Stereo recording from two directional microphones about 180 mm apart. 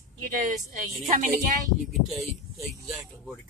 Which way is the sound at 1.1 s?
45° right (ahead or behind).